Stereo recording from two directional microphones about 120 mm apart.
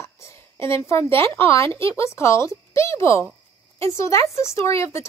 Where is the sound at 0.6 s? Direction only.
20° left (ahead or behind).